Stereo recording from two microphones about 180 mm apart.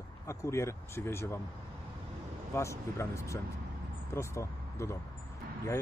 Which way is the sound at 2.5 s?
15° left (ahead or behind).